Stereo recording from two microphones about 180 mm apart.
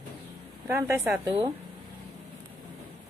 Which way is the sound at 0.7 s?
15° right (ahead or behind).